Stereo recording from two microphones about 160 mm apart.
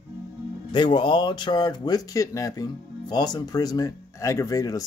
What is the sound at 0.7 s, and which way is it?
Speech, 30° left (ahead or behind).